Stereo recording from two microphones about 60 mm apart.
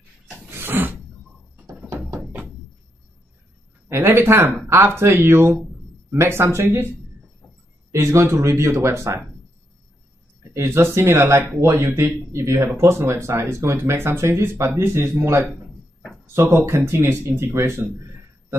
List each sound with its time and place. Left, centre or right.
0.5 s a sound: right
3.9 s speech: right
7.9 s speech: right
10.5 s speech: right
16.3 s speech: right